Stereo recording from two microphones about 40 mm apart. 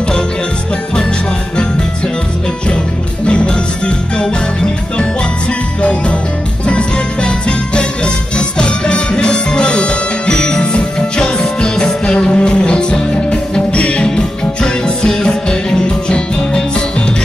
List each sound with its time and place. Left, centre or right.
3.3 s music: left
14.0 s music: centre